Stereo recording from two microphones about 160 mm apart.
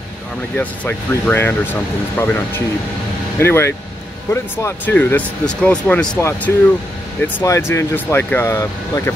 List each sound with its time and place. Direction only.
0.6 s speech: 10° left (ahead or behind)